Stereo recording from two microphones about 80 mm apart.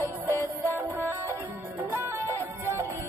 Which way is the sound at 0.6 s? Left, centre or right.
Right.